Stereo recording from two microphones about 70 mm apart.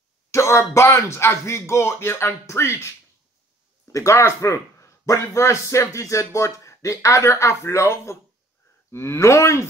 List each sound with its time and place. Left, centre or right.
0.3 s speech: left